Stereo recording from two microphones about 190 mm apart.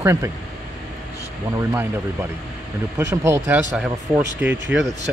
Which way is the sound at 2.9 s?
15° right (ahead or behind).